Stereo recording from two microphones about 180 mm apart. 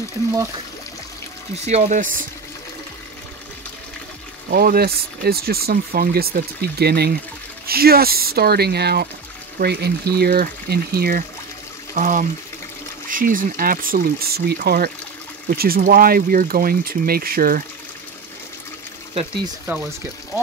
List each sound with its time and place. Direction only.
1.7 s speech: 45° right (ahead or behind)
4.5 s speech: 55° right (ahead or behind)
19.7 s speech: 10° right (ahead or behind)